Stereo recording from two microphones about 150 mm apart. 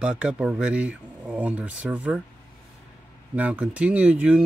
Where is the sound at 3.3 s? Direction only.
10° right (ahead or behind).